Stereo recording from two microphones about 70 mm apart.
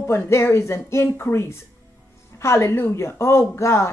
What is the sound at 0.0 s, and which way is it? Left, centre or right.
Speech, left.